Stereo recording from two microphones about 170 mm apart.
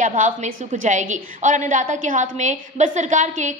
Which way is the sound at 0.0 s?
50° right (ahead or behind).